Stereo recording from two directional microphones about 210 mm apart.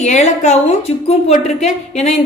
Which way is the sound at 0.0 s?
35° left (ahead or behind).